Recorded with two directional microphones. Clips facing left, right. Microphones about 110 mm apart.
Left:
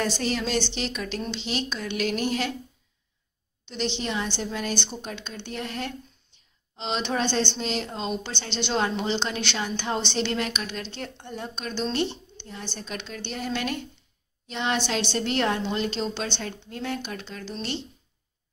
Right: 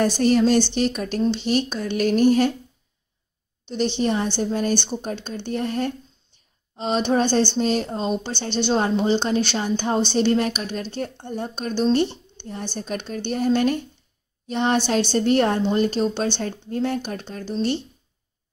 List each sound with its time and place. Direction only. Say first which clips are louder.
0.0 s a woman's voice: right 9 dB; 50° right (ahead or behind)
3.6 s a woman's voice: right 7 dB; 40° right (ahead or behind)